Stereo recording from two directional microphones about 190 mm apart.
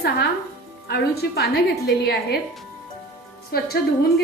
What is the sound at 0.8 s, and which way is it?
Speech, 55° left (ahead or behind).